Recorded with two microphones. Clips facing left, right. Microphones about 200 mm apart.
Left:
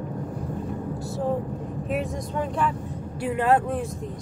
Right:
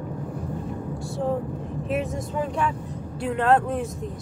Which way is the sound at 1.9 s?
Centre (ahead or behind).